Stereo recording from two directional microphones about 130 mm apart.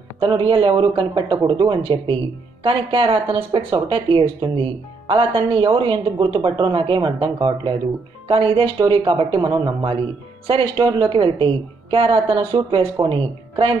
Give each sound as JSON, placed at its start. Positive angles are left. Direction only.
{"t": 0.2, "sound": "speech", "side_deg": -40}